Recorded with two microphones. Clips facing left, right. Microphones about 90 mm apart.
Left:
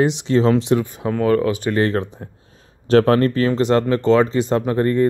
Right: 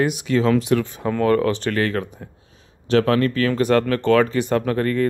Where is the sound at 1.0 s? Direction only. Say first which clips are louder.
Even; 10° left (ahead or behind).